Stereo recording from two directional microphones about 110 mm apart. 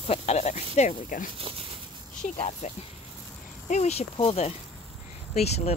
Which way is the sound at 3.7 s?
80° left.